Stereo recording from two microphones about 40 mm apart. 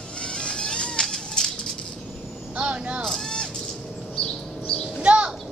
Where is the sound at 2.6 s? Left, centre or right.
Right.